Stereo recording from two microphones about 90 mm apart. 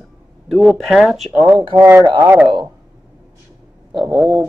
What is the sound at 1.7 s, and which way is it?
Speech, 90° right.